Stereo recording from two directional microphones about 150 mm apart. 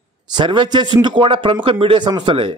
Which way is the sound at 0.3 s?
30° right (ahead or behind).